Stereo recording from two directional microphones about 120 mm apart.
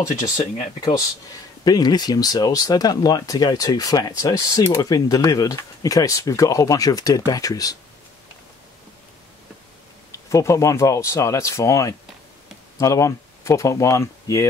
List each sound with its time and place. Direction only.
0.0 s speech: 30° left (ahead or behind)
1.6 s speech: 35° left (ahead or behind)
10.3 s speech: 25° left (ahead or behind)